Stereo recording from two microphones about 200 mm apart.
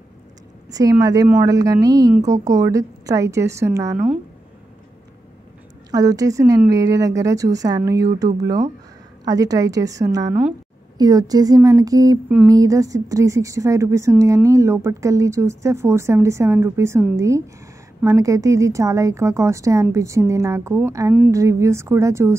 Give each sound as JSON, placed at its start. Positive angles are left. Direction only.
{"t": 0.7, "sound": "a woman's voice", "side_deg": -20}
{"t": 5.9, "sound": "speech", "side_deg": -20}
{"t": 9.2, "sound": "speech", "side_deg": -20}
{"t": 18.0, "sound": "speech", "side_deg": -15}